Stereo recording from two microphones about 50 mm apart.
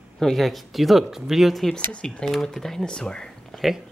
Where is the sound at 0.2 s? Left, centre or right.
Centre.